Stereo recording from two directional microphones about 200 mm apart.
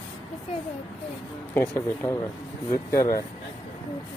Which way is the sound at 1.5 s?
10° left (ahead or behind).